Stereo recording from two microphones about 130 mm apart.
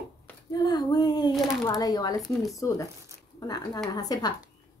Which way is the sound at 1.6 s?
25° left (ahead or behind).